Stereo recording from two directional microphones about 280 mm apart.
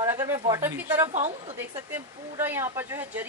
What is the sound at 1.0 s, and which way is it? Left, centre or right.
Speech, right.